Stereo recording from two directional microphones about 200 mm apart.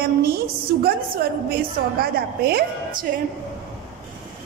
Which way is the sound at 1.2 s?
50° right (ahead or behind).